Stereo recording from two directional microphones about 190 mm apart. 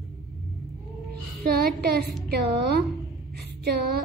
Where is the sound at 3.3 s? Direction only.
60° right (ahead or behind).